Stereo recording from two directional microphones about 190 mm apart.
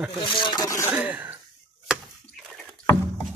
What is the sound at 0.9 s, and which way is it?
Speech, 10° right (ahead or behind).